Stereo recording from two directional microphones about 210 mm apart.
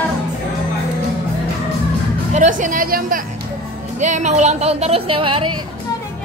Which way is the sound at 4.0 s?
35° right (ahead or behind).